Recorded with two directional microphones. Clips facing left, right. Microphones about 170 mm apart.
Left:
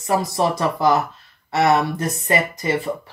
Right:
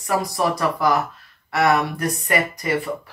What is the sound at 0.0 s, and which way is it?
Speech, 25° left (ahead or behind).